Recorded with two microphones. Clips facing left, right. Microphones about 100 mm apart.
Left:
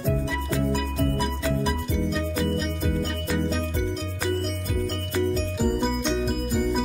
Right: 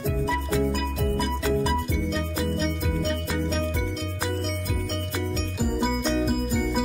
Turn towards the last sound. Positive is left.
turn(degrees=-5)  # may be behind; listen again after turning